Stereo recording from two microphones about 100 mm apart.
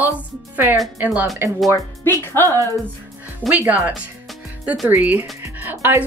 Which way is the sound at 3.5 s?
20° right (ahead or behind).